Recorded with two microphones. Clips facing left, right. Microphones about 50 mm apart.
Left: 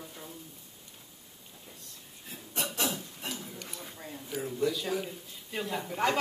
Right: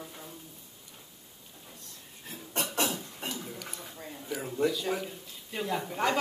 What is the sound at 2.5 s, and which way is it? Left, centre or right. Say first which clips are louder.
Cough: right 2 dB; right.